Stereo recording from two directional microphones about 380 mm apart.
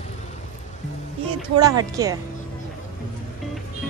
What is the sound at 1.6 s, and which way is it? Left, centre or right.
Speech, centre.